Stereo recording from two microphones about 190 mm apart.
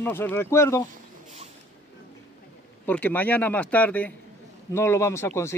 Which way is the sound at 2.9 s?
10° left (ahead or behind).